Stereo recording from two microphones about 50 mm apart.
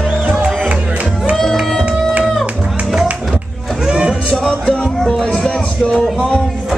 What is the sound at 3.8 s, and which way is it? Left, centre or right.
Music, centre.